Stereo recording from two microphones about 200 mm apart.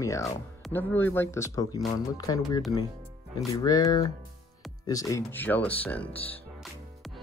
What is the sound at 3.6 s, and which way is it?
Speech, 20° left (ahead or behind).